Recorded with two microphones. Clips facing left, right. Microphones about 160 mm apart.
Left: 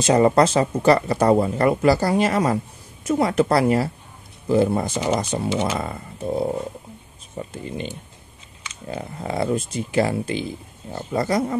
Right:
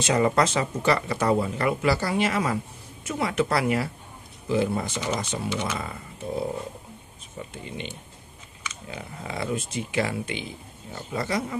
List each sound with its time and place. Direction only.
0.0 s speech: 35° left (ahead or behind)